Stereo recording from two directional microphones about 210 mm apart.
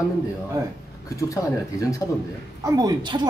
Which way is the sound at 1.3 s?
15° left (ahead or behind).